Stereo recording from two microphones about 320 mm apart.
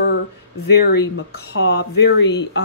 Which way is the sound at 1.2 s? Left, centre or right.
Left.